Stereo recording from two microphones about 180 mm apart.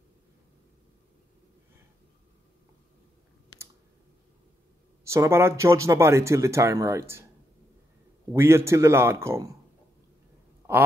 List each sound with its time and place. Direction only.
5.0 s speech: 15° right (ahead or behind)
8.3 s speech: 15° right (ahead or behind)